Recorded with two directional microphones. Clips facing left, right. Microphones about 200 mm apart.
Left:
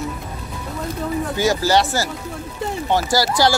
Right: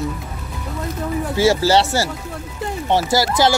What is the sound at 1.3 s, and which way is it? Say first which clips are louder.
Speech: right 3 dB; 30° right (ahead or behind).